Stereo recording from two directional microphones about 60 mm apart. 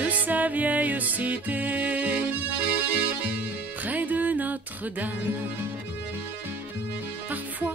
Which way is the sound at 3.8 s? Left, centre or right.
Right.